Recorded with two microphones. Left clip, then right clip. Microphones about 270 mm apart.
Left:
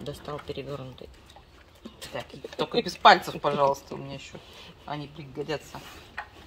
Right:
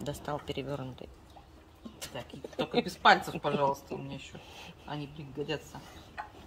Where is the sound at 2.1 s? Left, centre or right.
Left.